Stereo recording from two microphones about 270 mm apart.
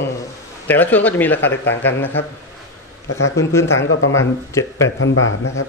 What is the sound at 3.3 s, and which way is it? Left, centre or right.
Speech, centre.